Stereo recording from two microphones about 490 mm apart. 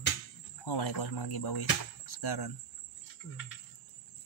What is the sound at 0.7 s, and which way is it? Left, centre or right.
Speech, left.